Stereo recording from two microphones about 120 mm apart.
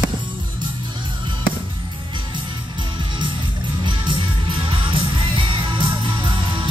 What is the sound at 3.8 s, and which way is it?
Music, 45° right (ahead or behind).